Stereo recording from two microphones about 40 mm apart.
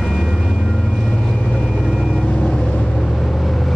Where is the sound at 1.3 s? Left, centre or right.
Left.